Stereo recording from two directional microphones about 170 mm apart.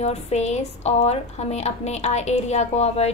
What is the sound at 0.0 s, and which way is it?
A woman's voice, 40° left (ahead or behind).